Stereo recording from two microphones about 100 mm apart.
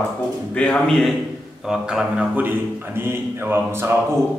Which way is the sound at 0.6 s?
10° left (ahead or behind).